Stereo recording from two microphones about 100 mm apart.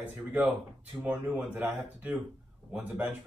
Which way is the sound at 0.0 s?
15° right (ahead or behind).